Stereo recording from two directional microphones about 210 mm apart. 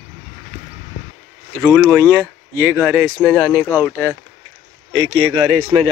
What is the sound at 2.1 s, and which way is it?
Speech, 10° right (ahead or behind).